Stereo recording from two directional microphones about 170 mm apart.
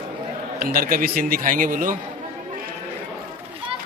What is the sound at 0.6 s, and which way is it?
A man's voice, 60° right (ahead or behind).